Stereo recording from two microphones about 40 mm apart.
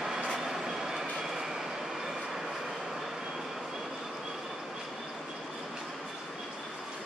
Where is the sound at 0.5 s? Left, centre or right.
Centre.